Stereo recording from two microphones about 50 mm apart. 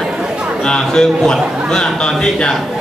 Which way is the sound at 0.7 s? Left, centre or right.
Centre.